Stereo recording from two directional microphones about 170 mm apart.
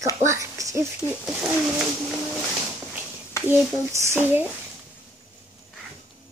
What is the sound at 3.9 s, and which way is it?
Speech, 15° right (ahead or behind).